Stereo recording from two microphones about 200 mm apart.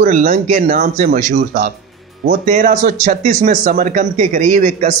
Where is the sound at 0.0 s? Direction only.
40° right (ahead or behind).